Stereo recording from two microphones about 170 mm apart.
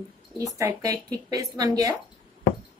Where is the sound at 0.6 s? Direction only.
20° right (ahead or behind).